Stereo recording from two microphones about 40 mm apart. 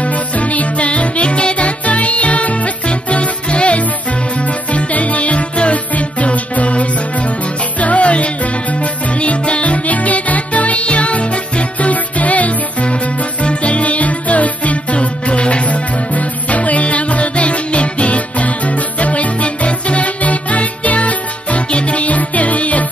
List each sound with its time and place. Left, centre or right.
0.0 s music: left